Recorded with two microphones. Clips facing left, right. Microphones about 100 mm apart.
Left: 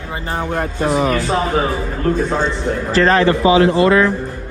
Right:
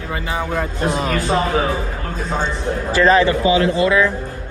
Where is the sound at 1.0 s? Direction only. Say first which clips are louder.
Even; 15° left (ahead or behind).